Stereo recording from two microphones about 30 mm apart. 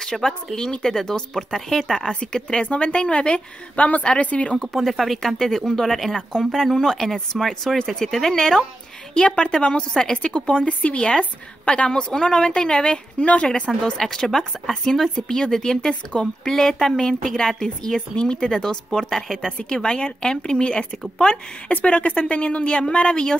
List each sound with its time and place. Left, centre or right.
0.0 s a woman's voice: left
2.6 s a woman's voice: left
3.7 s a woman's voice: left
4.6 s a woman's voice: centre; by 10.7 s left
10.7 s a woman's voice: left
11.1 s a woman's voice: left
11.9 s speech: left
13.2 s a woman's voice: left
13.9 s a woman's voice: centre
18.1 s speech: left
21.6 s a woman's voice: left